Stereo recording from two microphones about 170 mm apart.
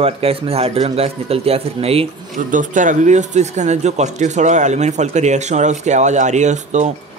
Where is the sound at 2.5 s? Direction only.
50° right (ahead or behind).